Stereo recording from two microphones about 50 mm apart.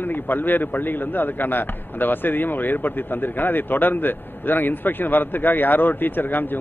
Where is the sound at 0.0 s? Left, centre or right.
Left.